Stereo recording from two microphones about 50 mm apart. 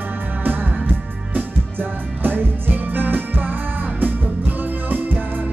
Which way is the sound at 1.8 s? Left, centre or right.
Right.